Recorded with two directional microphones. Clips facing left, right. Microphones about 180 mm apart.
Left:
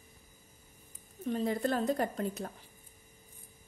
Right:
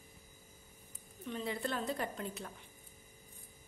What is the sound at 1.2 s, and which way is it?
Speech, 40° left (ahead or behind).